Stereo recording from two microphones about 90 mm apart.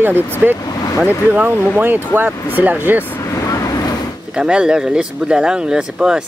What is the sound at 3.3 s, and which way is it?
Vehicle, 40° left (ahead or behind).